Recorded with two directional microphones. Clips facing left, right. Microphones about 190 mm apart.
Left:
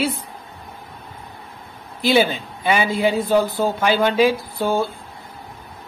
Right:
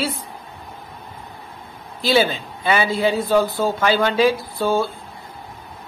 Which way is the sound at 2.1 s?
15° left (ahead or behind).